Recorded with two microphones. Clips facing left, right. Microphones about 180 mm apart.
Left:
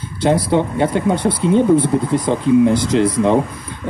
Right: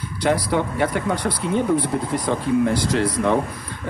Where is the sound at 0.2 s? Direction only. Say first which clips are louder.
Left 5 dB; 25° left (ahead or behind).